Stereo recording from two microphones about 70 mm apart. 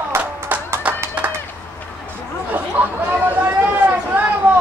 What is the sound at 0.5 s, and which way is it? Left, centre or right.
Music, right.